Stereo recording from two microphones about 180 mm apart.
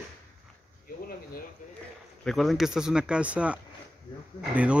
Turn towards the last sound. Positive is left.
turn(degrees=-5)  # may be behind; listen again after turning